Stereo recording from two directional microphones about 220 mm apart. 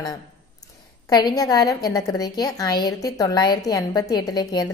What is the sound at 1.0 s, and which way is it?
A woman's voice, 15° left (ahead or behind).